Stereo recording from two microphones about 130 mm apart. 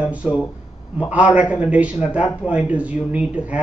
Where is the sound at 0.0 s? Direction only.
10° right (ahead or behind).